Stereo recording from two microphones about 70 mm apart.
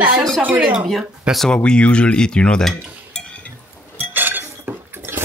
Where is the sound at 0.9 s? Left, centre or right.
Centre.